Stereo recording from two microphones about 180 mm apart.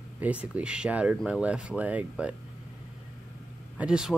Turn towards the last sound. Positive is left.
turn(degrees=-5)  # may be behind; listen again after turning